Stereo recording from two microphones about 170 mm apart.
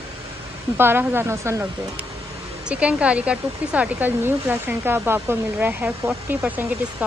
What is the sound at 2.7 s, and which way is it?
Speech, 5° right (ahead or behind).